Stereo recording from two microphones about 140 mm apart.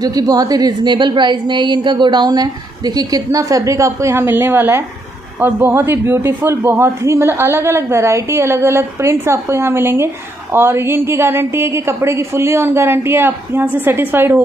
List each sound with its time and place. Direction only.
0.0 s a woman's voice: 25° right (ahead or behind)